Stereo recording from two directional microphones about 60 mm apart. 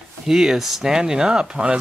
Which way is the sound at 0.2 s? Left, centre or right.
Centre.